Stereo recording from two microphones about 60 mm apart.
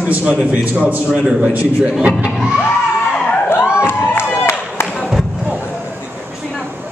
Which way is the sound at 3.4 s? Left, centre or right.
Left.